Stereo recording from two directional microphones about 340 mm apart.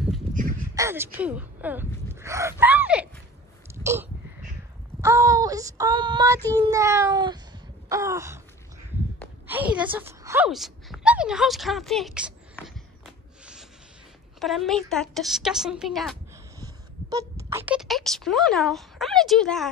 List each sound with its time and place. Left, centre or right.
0.3 s crow: right
0.7 s speech: centre
3.6 s a sound: centre
5.0 s child singing: centre
9.5 s speech: centre
9.8 s a sound: centre
14.4 s speech: centre
16.5 s speech: centre